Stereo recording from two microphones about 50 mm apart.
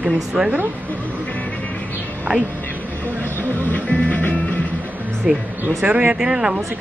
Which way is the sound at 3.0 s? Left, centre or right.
Left.